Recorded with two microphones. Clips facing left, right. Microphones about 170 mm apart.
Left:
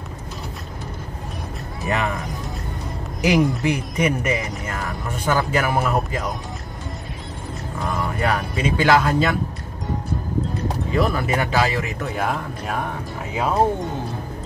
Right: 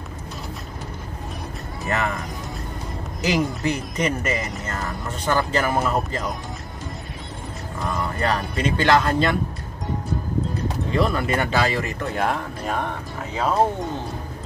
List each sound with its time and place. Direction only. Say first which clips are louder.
1.9 s speech: left 1 dB; 15° left (ahead or behind)
3.2 s speech: left 4 dB; 15° left (ahead or behind)
7.9 s speech: left 1 dB; 5° left (ahead or behind)
11.0 s speech: left 1 dB; 5° left (ahead or behind)